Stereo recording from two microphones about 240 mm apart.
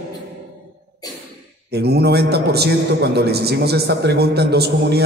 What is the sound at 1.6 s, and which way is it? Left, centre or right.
A man's voice, right.